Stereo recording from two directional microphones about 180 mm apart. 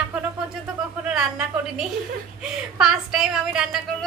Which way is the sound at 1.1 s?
5° right (ahead or behind).